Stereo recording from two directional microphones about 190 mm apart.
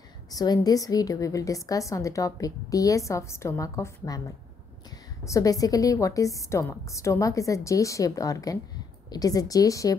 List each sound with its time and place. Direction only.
0.3 s a woman's voice: 20° left (ahead or behind)
5.2 s a woman's voice: 15° left (ahead or behind)